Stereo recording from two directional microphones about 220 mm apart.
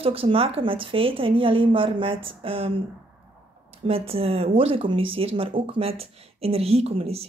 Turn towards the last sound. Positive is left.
turn(degrees=-25)  # may be behind; listen again after turning